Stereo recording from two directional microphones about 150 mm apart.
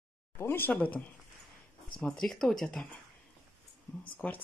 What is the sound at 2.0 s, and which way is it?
Speech, 5° left (ahead or behind).